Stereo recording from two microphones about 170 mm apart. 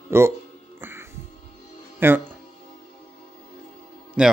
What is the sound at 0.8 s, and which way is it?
Music, 15° right (ahead or behind).